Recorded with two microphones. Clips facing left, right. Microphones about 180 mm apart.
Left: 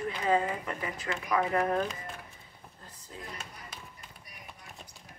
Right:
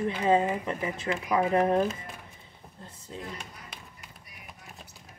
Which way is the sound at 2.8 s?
25° right (ahead or behind).